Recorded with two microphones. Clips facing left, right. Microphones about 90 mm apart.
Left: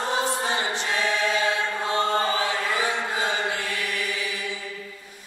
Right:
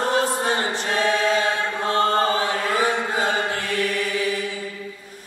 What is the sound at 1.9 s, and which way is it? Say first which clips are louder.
Chant: right 5 dB; 45° right (ahead or behind).